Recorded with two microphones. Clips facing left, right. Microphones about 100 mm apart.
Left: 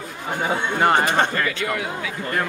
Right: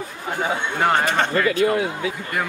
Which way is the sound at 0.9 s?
15° left (ahead or behind).